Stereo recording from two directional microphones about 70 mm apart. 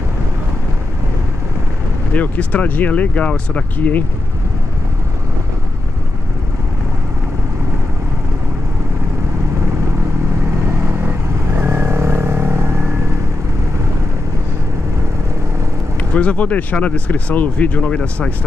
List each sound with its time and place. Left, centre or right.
2.1 s speech: left
10.9 s vehicle: right
16.0 s speech: centre